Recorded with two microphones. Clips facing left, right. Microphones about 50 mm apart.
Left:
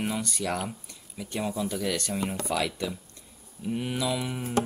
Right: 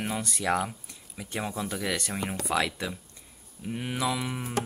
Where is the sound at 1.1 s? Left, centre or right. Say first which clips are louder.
Left 2 dB; centre.